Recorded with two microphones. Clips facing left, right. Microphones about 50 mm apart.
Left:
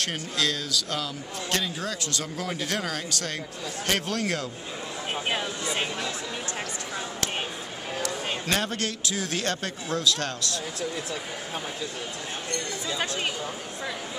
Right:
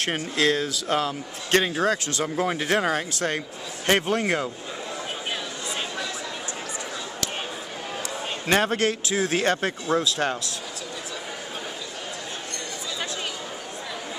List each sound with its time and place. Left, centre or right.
0.0 s a man's voice: right
2.0 s speech: right
5.3 s a sound: left
8.5 s speech: right